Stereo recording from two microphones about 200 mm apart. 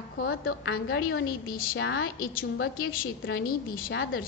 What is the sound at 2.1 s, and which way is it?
Speech, 45° left (ahead or behind).